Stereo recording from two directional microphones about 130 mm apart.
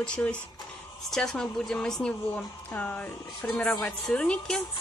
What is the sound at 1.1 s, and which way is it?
A woman's voice, 5° left (ahead or behind).